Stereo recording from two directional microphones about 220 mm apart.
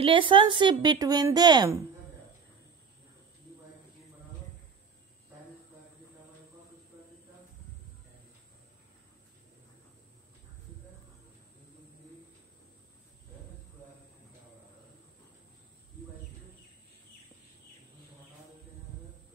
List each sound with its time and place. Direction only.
0.0 s a woman's voice: 25° right (ahead or behind)